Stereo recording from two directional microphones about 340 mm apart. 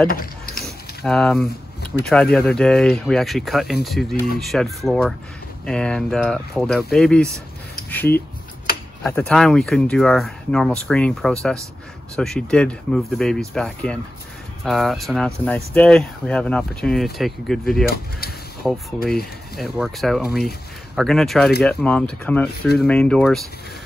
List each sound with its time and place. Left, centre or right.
0.6 s a sound: centre
1.9 s speech: centre
17.8 s speech: left
18.6 s speech: centre